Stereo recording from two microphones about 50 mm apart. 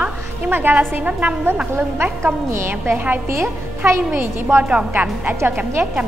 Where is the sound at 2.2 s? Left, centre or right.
Right.